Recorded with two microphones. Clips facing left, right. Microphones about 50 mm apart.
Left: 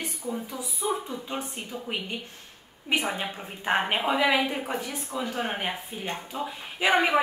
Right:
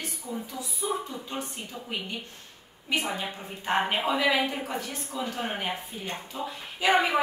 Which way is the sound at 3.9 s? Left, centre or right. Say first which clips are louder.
Left 1 dB; centre.